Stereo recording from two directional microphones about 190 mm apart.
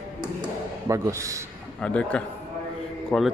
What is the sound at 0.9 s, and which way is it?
Speech, 15° right (ahead or behind).